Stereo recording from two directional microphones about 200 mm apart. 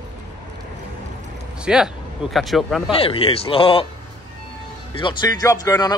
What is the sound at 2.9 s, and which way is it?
Speech, 25° left (ahead or behind).